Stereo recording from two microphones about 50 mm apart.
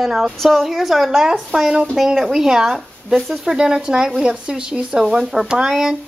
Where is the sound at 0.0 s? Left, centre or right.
Centre.